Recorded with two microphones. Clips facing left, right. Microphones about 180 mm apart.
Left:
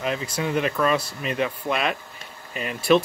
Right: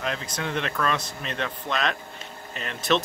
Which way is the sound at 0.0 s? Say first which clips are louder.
Left 4 dB; 5° left (ahead or behind).